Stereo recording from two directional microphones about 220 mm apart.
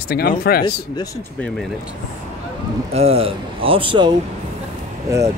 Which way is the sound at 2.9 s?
25° right (ahead or behind).